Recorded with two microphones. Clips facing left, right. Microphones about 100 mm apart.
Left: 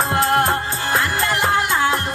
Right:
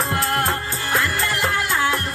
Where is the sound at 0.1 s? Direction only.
20° left (ahead or behind).